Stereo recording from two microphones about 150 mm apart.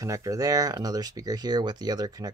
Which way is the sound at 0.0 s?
20° right (ahead or behind).